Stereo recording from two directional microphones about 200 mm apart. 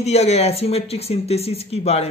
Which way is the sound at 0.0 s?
30° left (ahead or behind).